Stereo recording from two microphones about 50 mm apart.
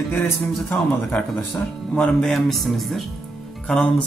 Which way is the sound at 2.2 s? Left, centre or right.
Centre.